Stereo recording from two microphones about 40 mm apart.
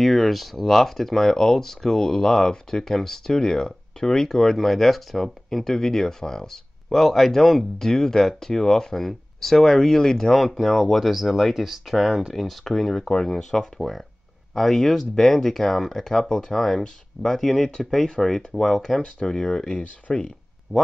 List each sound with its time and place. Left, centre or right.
0.0 s speech: centre
20.1 s speech: left